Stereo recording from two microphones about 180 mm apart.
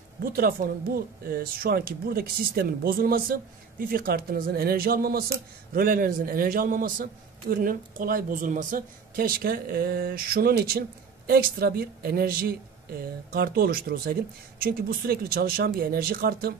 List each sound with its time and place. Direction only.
0.2 s a man's voice: 50° right (ahead or behind)